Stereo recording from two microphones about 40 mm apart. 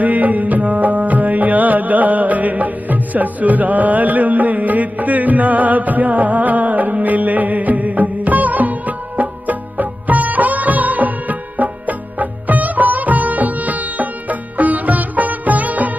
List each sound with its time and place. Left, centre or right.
0.0 s music: right